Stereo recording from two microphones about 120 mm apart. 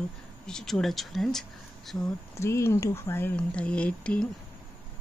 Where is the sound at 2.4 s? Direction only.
25° left (ahead or behind).